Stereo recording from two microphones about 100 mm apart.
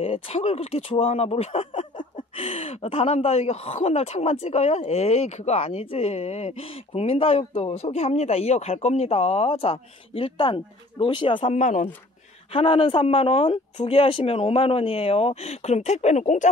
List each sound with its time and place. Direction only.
0.0 s speech: 85° left; by 11.4 s 55° left (ahead or behind)
12.5 s speech: 65° left (ahead or behind); by 16.2 s 90° left